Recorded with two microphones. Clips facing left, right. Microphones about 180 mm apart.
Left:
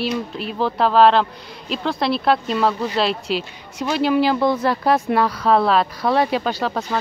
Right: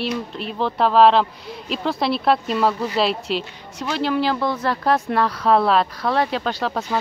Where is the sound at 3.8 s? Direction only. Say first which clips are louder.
Left 4 dB; 10° left (ahead or behind).